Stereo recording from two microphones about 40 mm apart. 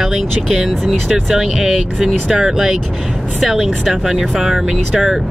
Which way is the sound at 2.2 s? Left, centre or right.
Right.